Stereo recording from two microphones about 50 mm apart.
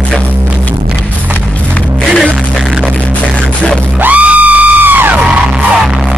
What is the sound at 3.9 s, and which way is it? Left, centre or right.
Music, right.